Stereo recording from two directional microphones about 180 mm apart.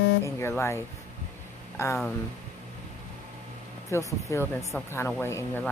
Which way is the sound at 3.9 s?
15° left (ahead or behind).